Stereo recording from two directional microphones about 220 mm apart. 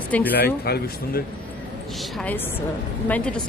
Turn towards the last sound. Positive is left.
turn(degrees=5)  # may be behind; listen again after turning